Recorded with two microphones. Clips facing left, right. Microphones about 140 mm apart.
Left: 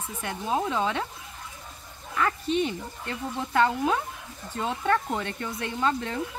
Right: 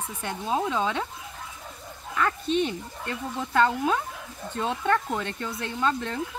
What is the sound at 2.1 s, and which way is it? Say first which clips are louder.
Speech: right 1 dB; 10° left (ahead or behind).